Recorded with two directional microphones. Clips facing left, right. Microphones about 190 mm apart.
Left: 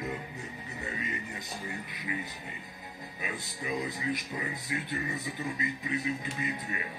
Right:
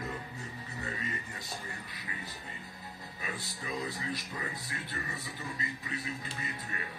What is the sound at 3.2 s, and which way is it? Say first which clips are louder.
Speech: left 3 dB; 15° left (ahead or behind).